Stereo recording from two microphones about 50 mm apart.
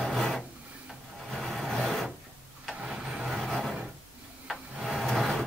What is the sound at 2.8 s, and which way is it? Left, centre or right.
Vehicle, centre.